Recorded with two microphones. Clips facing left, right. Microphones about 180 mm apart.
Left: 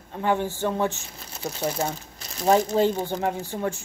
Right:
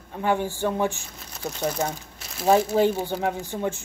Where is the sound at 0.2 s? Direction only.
15° right (ahead or behind).